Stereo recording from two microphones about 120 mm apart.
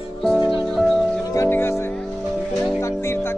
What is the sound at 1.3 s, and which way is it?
Music, 20° left (ahead or behind).